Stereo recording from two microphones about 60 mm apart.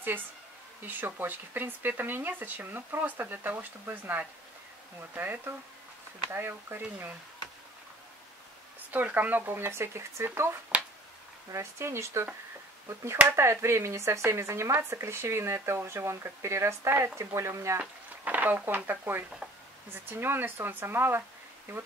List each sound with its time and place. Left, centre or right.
0.8 s speech: right
8.9 s speech: right
10.7 s finger snapping: right
11.5 s speech: right
17.7 s speech: right